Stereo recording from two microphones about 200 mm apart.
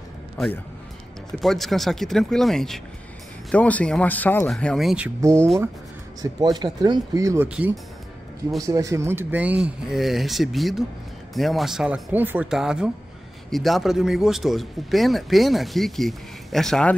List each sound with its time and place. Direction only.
1.4 s speech: centre (ahead or behind)
8.5 s speech: 15° right (ahead or behind); by 16.9 s centre (ahead or behind)